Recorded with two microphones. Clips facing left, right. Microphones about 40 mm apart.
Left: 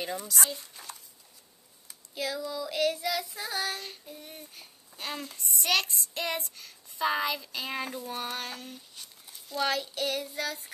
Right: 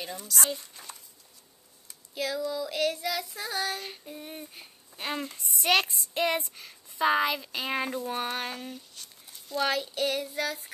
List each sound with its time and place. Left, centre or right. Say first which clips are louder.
0.0 s child singing: even; centre
3.8 s child singing: right 3 dB; centre
8.7 s child singing: right 1 dB; centre